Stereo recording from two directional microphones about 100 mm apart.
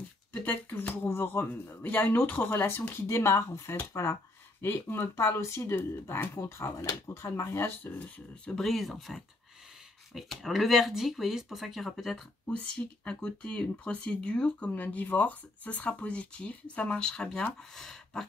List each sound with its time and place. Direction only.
0.3 s speech: 20° left (ahead or behind); by 12.2 s centre (ahead or behind)
12.4 s speech: 10° left (ahead or behind)